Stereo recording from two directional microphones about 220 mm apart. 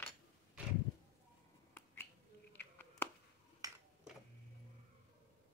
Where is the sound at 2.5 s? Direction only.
10° left (ahead or behind).